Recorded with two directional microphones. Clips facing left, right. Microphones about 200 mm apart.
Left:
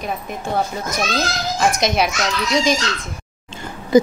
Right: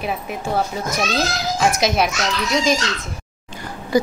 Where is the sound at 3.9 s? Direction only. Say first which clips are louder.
Left 5 dB; 20° left (ahead or behind).